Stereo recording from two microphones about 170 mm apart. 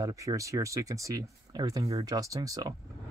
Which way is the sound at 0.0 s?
20° right (ahead or behind).